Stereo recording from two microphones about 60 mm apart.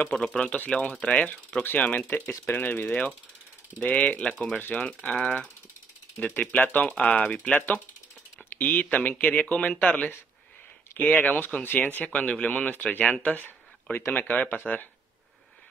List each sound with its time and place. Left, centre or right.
0.1 s speech: centre; by 2.3 s left
2.4 s mechanisms: left
3.8 s speech: left
6.2 s speech: left
13.9 s speech: left